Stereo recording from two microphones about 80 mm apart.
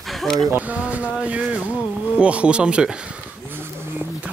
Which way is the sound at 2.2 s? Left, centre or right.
Centre.